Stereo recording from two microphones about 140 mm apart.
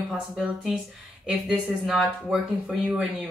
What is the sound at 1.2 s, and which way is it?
Speech, 5° right (ahead or behind).